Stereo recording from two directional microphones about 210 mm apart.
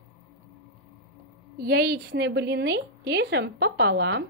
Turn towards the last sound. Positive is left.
turn(degrees=-55)  # may be behind; listen again after turning